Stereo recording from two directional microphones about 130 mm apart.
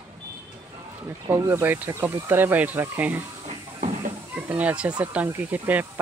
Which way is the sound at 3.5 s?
60° right (ahead or behind).